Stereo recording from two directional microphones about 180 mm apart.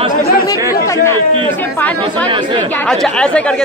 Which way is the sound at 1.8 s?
10° left (ahead or behind).